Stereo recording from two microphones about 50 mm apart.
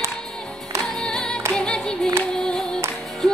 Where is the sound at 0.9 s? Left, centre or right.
Centre.